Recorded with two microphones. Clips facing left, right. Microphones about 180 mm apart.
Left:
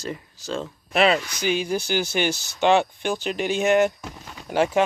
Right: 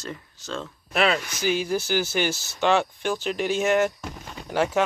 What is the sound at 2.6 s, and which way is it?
Speech, 20° left (ahead or behind).